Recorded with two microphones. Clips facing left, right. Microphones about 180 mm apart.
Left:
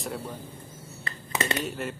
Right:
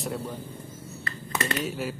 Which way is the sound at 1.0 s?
20° left (ahead or behind).